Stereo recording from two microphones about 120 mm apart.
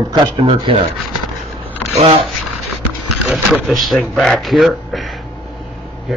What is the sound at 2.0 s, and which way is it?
Speech, 55° right (ahead or behind).